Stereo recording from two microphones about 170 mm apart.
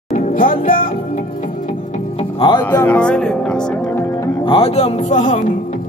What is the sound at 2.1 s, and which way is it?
Music, 30° left (ahead or behind).